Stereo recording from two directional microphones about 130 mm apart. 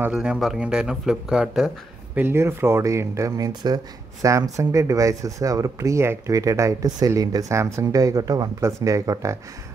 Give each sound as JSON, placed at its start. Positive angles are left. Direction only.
{"t": 0.1, "sound": "speech", "side_deg": -5}
{"t": 2.1, "sound": "speech", "side_deg": -20}